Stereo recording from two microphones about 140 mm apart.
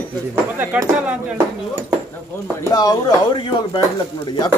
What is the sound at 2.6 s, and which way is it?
Speech, 25° left (ahead or behind).